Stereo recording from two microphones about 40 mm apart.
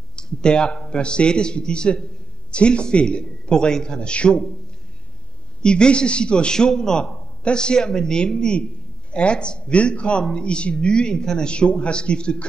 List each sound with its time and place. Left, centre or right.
0.1 s a man's voice: left
5.6 s a man's voice: left